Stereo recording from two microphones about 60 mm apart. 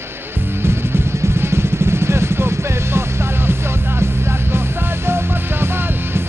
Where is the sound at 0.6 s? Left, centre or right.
Right.